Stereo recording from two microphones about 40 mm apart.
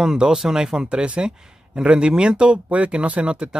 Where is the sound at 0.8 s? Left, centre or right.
Right.